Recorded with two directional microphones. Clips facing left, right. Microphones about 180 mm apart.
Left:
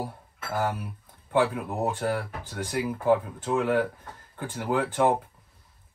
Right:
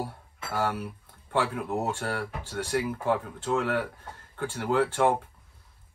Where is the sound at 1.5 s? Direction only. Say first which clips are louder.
Left 1 dB; 10° left (ahead or behind).